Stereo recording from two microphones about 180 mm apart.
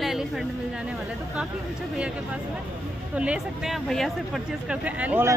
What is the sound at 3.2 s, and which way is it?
Speech, 5° right (ahead or behind).